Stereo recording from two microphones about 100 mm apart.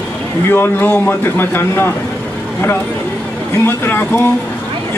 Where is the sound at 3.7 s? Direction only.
20° left (ahead or behind).